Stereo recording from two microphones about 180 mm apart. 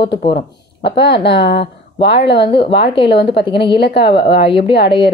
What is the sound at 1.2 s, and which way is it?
A woman's voice, 70° left (ahead or behind).